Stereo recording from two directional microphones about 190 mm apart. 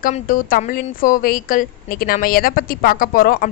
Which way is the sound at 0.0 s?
45° left (ahead or behind).